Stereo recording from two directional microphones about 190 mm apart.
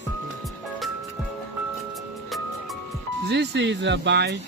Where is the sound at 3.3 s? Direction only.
65° right (ahead or behind).